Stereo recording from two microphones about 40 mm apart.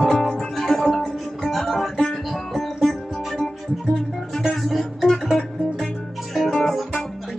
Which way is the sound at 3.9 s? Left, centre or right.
Centre.